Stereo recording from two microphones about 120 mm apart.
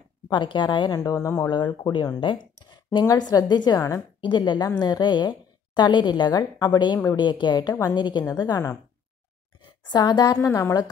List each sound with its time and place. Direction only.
0.3 s speech: 40° left (ahead or behind); by 1.5 s 25° left (ahead or behind)
1.5 s a woman's voice: 35° left (ahead or behind)